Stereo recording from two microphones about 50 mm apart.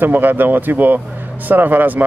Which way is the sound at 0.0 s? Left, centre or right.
Right.